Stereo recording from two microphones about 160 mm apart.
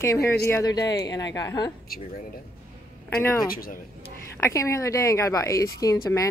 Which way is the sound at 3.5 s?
65° left (ahead or behind).